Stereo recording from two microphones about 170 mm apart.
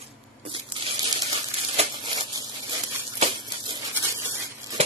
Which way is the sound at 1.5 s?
30° right (ahead or behind).